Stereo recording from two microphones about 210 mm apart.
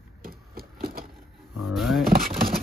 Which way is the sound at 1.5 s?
Centre (ahead or behind).